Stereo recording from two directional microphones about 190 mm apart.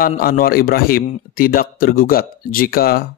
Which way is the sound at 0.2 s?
50° left (ahead or behind).